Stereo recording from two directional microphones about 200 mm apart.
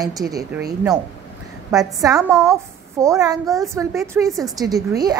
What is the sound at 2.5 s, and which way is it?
A woman's voice, 15° right (ahead or behind).